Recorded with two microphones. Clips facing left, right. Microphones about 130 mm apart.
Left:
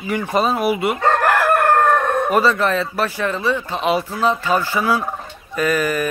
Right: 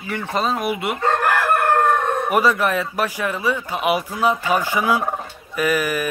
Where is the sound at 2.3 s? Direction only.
10° right (ahead or behind).